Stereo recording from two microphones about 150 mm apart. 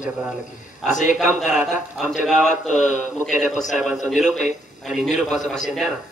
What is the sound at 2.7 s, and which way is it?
Speech, 55° left (ahead or behind).